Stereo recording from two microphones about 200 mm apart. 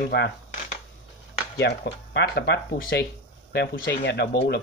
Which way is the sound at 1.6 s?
55° left (ahead or behind).